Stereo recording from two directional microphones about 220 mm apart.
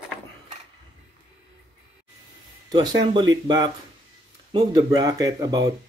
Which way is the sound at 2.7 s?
20° right (ahead or behind).